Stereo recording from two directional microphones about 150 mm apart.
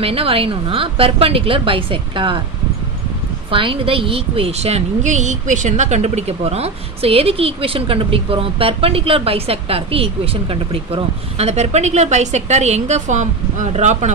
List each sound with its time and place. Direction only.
0.0 s a woman's voice: 40° right (ahead or behind)
3.5 s a woman's voice: 35° right (ahead or behind); by 14.1 s 50° right (ahead or behind)